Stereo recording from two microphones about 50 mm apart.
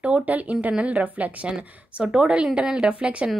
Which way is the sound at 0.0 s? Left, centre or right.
Right.